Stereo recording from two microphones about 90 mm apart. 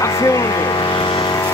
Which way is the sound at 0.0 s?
40° left (ahead or behind).